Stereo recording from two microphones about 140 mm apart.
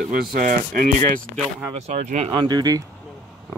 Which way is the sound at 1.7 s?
50° right (ahead or behind).